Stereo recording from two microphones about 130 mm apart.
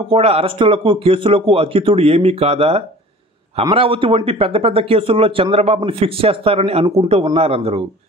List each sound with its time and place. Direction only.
0.1 s speech: 50° right (ahead or behind)